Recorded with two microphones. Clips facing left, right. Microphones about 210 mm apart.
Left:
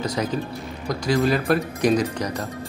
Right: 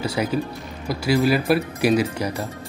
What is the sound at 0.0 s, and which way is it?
Speech, 10° right (ahead or behind).